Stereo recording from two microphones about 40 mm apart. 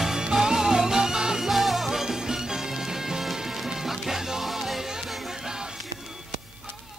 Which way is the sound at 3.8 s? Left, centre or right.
Centre.